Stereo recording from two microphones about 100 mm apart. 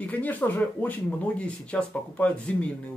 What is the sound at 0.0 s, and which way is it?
Speech, 15° left (ahead or behind).